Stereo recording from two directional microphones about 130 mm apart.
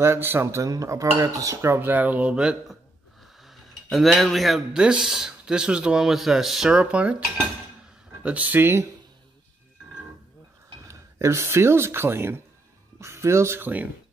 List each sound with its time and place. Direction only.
0.0 s speech: 20° right (ahead or behind)
8.2 s speech: 10° right (ahead or behind)
10.9 s speech: 20° right (ahead or behind)